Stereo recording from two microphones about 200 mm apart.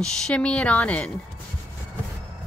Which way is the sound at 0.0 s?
5° left (ahead or behind).